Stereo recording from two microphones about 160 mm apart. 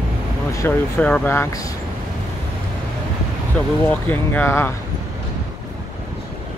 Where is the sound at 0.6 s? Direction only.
10° left (ahead or behind).